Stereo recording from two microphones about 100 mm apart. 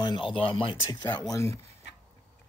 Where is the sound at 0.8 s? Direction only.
45° left (ahead or behind).